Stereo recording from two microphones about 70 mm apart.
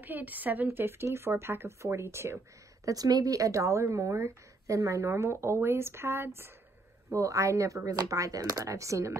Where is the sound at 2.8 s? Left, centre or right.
Right.